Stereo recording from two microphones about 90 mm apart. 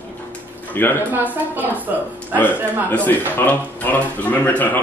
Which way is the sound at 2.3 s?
20° left (ahead or behind).